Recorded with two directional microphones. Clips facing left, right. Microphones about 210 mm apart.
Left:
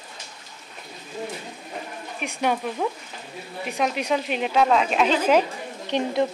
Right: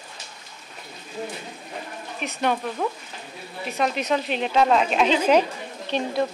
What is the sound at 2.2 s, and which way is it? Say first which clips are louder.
A woman's voice: even; 10° left (ahead or behind).